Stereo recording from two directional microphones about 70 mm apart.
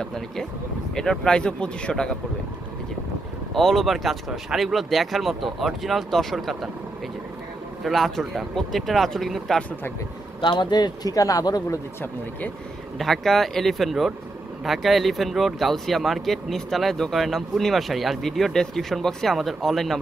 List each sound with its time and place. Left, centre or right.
0.0 s speech: centre
3.5 s speech: centre
7.8 s speech: centre
10.4 s speech: left
13.0 s speech: centre